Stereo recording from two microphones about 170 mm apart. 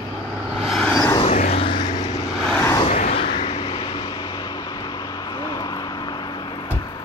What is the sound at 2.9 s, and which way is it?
Vehicle, 40° left (ahead or behind).